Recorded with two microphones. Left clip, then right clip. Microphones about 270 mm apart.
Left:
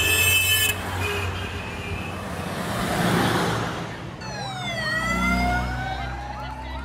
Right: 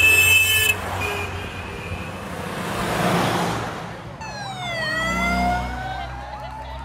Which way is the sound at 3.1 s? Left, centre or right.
Right.